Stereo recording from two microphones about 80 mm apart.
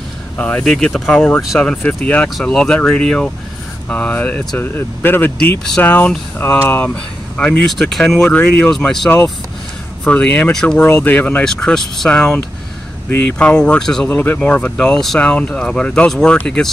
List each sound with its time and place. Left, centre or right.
0.4 s speech: centre
0.7 s speech: centre
7.9 s speech: centre
8.7 s speech: centre; by 11.4 s left
11.4 s speech: centre
13.1 s speech: left
13.4 s speech: centre
14.0 s speech: left